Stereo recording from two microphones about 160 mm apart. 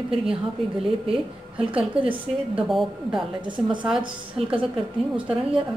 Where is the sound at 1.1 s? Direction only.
35° right (ahead or behind).